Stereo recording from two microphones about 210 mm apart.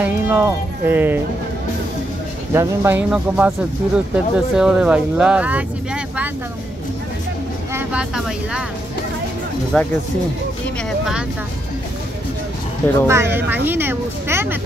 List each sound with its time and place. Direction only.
0.0 s speech: 10° right (ahead or behind)
2.5 s speech: 15° right (ahead or behind)
7.7 s speech: 5° right (ahead or behind)
9.7 s speech: 5° left (ahead or behind)
13.0 s speech: 10° right (ahead or behind)